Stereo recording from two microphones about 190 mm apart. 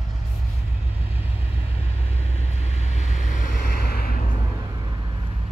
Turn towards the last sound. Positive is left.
turn(degrees=50)  # may be behind; listen again after turning